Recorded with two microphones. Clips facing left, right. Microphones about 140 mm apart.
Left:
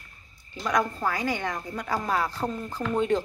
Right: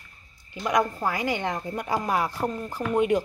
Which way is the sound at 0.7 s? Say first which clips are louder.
Right 2 dB; 15° right (ahead or behind).